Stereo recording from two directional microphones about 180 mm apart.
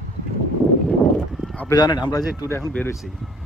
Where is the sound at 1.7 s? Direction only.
25° left (ahead or behind).